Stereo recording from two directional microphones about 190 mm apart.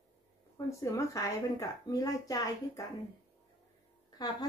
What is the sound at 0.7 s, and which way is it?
Speech, 15° left (ahead or behind).